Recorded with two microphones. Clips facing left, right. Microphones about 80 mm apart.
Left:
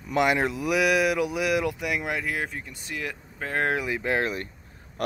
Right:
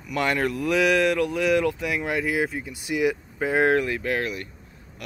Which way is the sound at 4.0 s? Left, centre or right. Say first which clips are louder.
Left 1 dB; left.